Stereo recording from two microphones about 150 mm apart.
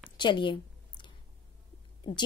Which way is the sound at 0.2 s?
30° left (ahead or behind).